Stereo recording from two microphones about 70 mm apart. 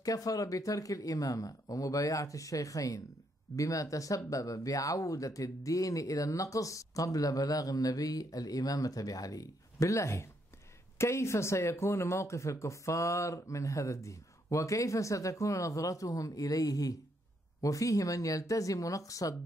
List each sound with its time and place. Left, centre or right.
0.0 s speech: left